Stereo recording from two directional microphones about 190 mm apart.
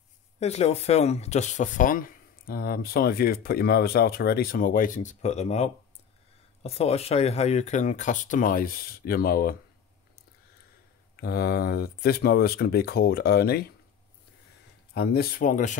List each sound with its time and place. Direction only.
0.4 s speech: 35° left (ahead or behind); by 9.6 s 50° left (ahead or behind)
11.1 s speech: 55° left (ahead or behind)
15.0 s speech: 50° left (ahead or behind)